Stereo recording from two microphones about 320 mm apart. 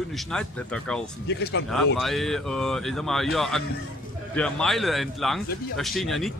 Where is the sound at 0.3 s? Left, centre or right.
Centre.